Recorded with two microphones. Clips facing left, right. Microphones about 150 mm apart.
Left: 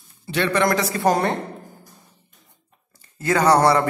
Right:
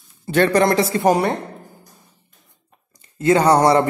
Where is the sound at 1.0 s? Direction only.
15° right (ahead or behind).